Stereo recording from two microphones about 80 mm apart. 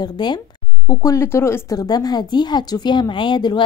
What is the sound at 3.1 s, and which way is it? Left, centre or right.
Speech, left.